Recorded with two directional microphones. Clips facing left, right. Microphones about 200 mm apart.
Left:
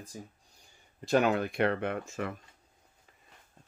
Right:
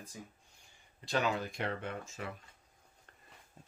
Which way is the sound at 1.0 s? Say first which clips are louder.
Left 7 dB; 55° left (ahead or behind).